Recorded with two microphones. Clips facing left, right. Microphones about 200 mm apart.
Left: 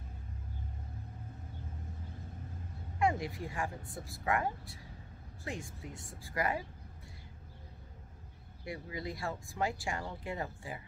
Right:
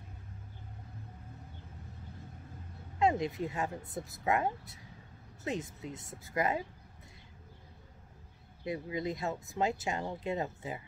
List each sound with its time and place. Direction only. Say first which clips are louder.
3.0 s speech: right 3 dB; 20° right (ahead or behind)
8.6 s speech: right 6 dB; 20° right (ahead or behind)